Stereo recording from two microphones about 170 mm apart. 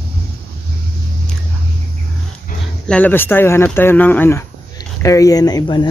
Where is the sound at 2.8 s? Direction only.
10° left (ahead or behind).